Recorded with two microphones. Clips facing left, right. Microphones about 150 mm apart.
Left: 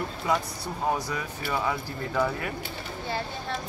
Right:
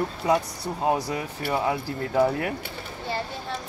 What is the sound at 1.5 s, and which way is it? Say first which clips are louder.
Speech: right 3 dB; 40° right (ahead or behind).